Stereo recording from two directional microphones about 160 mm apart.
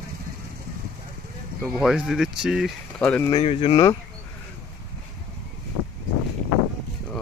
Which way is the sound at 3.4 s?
35° left (ahead or behind).